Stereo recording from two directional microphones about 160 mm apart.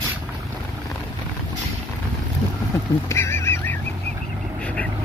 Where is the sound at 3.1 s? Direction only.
15° left (ahead or behind).